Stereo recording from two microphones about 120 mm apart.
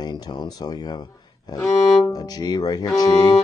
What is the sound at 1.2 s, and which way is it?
Music, 30° left (ahead or behind).